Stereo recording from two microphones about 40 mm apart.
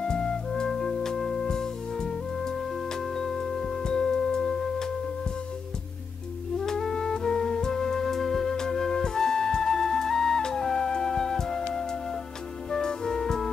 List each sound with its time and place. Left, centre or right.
0.0 s music: centre
6.6 s music: centre